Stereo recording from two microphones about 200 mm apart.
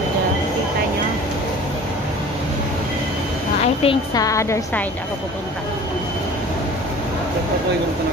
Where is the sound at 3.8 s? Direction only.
20° left (ahead or behind).